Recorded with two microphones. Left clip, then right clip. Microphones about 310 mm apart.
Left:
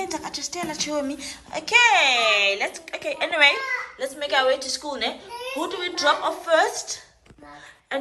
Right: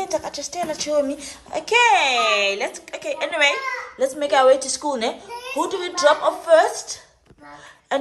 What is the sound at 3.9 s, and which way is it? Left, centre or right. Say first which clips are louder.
A woman's voice: right 7 dB; right.